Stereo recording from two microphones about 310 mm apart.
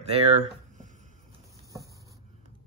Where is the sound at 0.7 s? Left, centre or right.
Right.